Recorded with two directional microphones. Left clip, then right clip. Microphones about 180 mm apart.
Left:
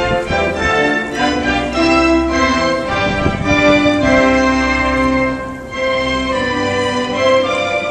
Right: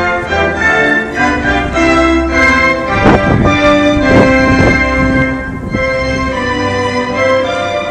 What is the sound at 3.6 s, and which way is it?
Music, 30° right (ahead or behind).